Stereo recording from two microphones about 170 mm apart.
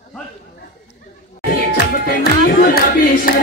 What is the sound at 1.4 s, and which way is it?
Music, 60° left (ahead or behind).